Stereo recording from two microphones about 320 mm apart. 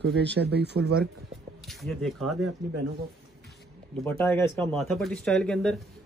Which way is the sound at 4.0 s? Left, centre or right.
Centre.